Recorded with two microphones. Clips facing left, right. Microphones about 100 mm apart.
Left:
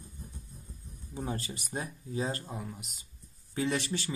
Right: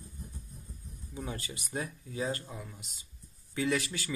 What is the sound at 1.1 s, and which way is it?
Speech, 35° left (ahead or behind).